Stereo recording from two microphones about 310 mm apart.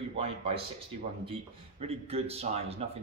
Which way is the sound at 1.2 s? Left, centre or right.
Centre.